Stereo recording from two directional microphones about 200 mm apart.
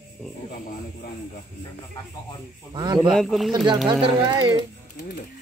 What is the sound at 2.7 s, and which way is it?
Speech, 20° right (ahead or behind).